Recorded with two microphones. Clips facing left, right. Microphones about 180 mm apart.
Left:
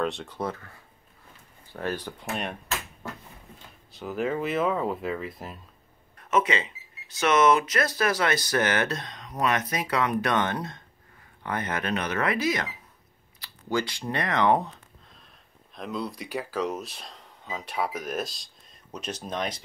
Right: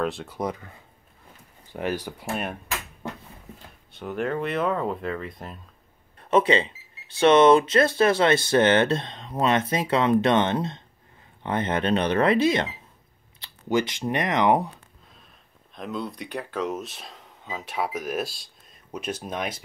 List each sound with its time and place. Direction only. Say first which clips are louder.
0.0 s speech: right 1 dB; centre (ahead or behind)
0.4 s speech: right 3 dB; 15° right (ahead or behind)
3.0 s a sound: right 5 dB; 20° right (ahead or behind)
3.9 s speech: right 1 dB; centre (ahead or behind)
6.1 s speech: right 5 dB; 30° right (ahead or behind); by 14.7 s 15° right (ahead or behind)
15.7 s speech: right 1 dB; centre (ahead or behind)